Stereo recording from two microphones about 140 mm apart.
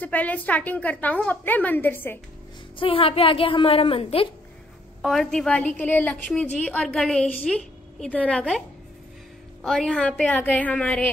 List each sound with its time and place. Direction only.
0.0 s a woman's voice: 10° left (ahead or behind)
2.8 s a woman's voice: 40° left (ahead or behind)
5.0 s a woman's voice: centre (ahead or behind)